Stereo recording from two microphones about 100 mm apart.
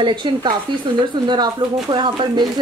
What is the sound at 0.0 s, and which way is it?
Speech, 50° right (ahead or behind).